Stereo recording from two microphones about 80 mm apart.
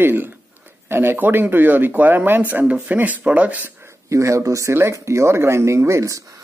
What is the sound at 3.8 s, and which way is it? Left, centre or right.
Speech, right.